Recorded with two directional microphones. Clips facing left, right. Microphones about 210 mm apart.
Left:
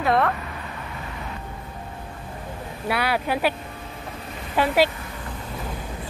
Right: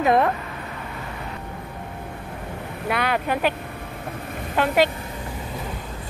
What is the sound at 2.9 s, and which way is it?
Speech, 5° left (ahead or behind).